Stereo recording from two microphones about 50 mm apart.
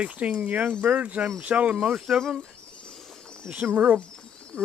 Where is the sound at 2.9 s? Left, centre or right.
Centre.